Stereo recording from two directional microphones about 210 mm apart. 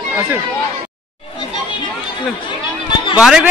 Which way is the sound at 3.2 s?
5° right (ahead or behind).